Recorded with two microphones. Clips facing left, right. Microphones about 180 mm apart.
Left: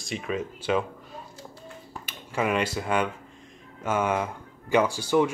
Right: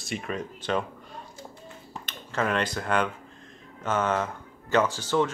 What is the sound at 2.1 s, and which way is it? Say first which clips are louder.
Speech: left 1 dB; 10° left (ahead or behind).